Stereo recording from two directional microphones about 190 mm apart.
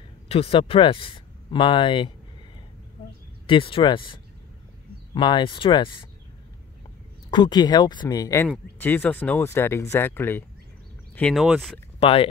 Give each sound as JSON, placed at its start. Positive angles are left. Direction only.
{"t": 0.3, "sound": "speech", "side_deg": 30}
{"t": 3.4, "sound": "speech", "side_deg": 25}
{"t": 7.2, "sound": "speech", "side_deg": 25}
{"t": 12.0, "sound": "speech", "side_deg": 30}